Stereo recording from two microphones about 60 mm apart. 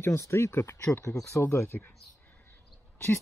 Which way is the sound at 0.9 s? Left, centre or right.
Left.